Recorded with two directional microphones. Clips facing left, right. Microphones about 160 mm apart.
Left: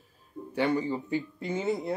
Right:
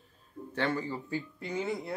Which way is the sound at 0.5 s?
15° left (ahead or behind).